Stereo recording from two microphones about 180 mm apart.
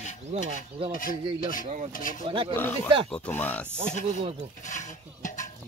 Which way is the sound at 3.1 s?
10° left (ahead or behind).